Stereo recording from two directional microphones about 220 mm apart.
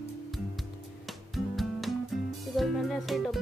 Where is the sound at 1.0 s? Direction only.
Centre (ahead or behind).